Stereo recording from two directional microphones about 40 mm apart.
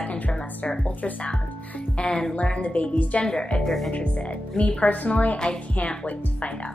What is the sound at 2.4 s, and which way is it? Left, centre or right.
Speech, left.